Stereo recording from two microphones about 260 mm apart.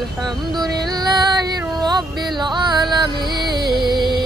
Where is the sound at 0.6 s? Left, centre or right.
Centre.